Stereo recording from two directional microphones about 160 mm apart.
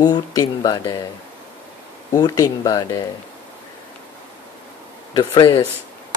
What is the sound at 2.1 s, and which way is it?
Speech, 25° left (ahead or behind).